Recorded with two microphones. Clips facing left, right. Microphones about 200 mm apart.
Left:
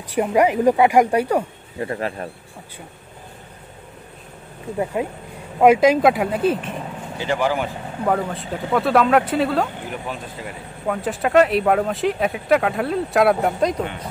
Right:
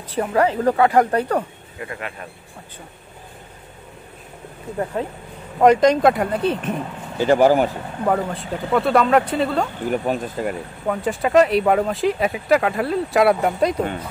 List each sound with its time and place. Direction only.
0.1 s speech: 15° left (ahead or behind)
1.8 s speech: 35° left (ahead or behind)
5.0 s speech: 10° left (ahead or behind)
7.2 s speech: 45° right (ahead or behind)
8.0 s speech: 5° right (ahead or behind)
9.8 s speech: 45° right (ahead or behind)
10.9 s speech: centre (ahead or behind)